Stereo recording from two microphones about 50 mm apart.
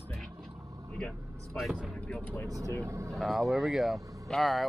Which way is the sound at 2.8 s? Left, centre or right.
Right.